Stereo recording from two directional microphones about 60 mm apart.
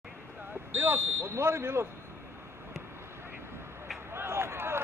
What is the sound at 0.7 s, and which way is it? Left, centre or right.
Speech, right.